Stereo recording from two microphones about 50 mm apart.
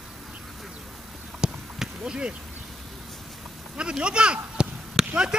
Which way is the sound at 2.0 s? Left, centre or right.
Centre.